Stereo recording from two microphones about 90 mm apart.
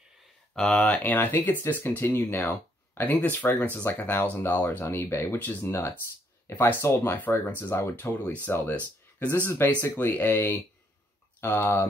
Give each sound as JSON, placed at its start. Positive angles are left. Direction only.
{"t": 0.6, "sound": "speech", "side_deg": 10}
{"t": 0.8, "sound": "speech", "side_deg": 20}